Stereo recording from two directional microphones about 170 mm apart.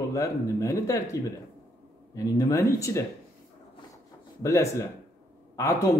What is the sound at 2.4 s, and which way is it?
Speech, 20° left (ahead or behind).